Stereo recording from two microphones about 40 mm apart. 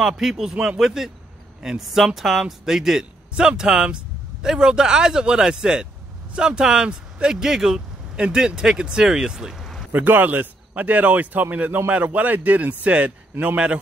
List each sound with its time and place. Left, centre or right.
0.0 s speech: centre
9.6 s a sound: centre
9.9 s speech: right